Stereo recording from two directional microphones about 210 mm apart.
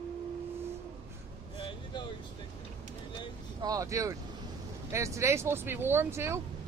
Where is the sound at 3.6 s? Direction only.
15° right (ahead or behind).